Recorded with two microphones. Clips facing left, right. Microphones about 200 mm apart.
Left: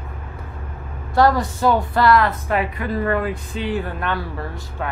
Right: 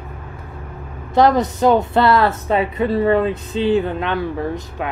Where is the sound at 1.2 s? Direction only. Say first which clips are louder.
Right 3 dB; 20° right (ahead or behind).